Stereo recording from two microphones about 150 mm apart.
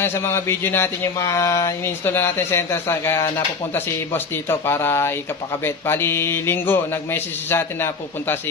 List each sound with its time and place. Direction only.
0.0 s speech: 15° left (ahead or behind)